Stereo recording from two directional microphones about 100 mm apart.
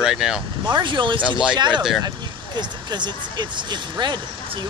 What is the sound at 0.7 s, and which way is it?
Speech, 50° right (ahead or behind).